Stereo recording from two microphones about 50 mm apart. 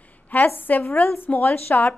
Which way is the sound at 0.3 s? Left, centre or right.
Left.